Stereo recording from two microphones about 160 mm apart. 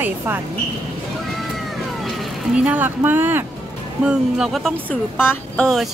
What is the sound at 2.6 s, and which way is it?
Speech, 10° right (ahead or behind).